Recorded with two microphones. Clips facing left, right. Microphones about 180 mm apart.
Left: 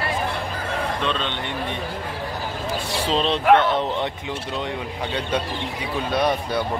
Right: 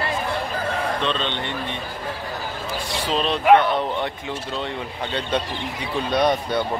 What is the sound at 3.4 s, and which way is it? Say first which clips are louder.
Speech: right 2 dB; 5° right (ahead or behind).